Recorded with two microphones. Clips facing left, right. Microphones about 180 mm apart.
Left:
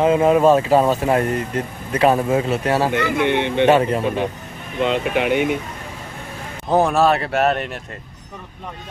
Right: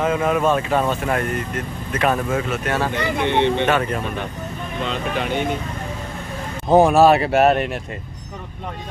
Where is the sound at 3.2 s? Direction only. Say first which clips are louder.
Right 1 dB; 15° left (ahead or behind).